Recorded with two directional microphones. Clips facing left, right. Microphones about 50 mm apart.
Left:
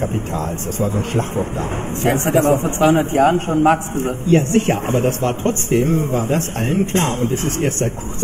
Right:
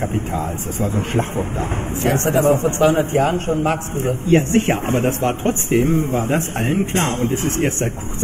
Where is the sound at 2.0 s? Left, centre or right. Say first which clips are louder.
Left 1 dB; centre.